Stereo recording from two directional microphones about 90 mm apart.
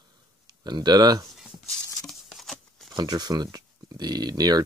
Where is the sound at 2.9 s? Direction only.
50° right (ahead or behind).